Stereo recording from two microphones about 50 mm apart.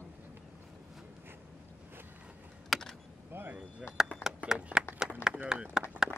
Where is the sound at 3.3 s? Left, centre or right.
Right.